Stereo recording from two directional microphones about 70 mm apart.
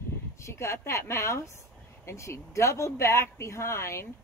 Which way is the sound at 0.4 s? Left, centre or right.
Left.